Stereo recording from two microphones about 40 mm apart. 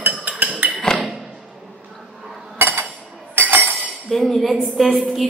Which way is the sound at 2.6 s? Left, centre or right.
Right.